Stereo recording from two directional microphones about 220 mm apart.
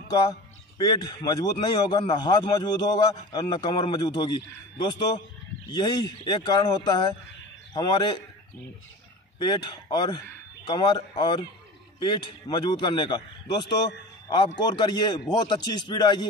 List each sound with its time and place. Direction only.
0.7 s a man's voice: 20° left (ahead or behind)
9.4 s a man's voice: 20° left (ahead or behind)